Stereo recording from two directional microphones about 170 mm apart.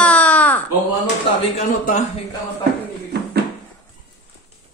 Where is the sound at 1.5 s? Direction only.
45° left (ahead or behind).